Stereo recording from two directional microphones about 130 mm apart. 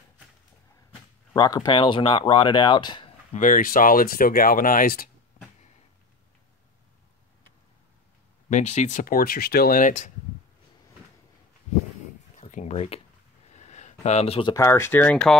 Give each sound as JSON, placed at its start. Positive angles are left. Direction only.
{"t": 1.3, "sound": "speech", "side_deg": 30}
{"t": 3.3, "sound": "speech", "side_deg": 85}
{"t": 8.5, "sound": "speech", "side_deg": 65}
{"t": 12.4, "sound": "a sound", "side_deg": 70}
{"t": 14.5, "sound": "speech", "side_deg": 20}